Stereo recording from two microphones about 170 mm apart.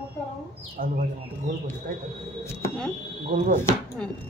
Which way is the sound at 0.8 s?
50° right (ahead or behind).